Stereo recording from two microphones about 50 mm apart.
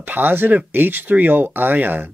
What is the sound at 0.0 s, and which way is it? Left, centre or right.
Speech, right.